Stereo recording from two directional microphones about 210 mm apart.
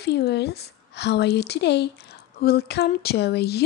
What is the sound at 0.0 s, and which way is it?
A woman's voice, 50° left (ahead or behind).